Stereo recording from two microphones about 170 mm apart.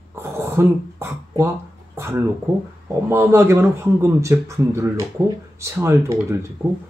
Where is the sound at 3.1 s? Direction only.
15° right (ahead or behind).